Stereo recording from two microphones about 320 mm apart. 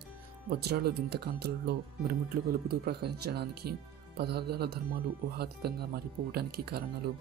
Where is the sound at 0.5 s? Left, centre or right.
Right.